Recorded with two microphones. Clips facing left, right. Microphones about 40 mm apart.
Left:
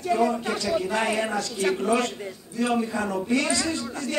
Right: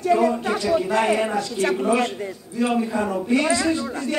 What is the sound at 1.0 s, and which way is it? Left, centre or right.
Speech, centre.